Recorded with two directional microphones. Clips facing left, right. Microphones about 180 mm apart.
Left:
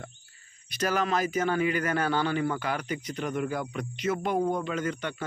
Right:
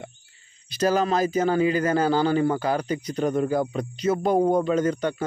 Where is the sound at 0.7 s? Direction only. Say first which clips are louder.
Right 6 dB; 35° right (ahead or behind).